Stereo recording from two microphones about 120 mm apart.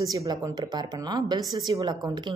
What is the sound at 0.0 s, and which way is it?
Speech, 30° right (ahead or behind).